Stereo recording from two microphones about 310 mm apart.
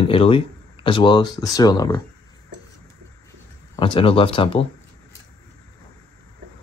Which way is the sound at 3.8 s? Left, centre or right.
Centre.